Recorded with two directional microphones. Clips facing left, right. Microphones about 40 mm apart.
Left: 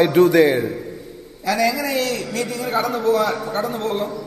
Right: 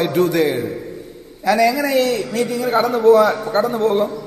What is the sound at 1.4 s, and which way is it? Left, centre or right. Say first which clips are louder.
A man's voice: right 4 dB; right.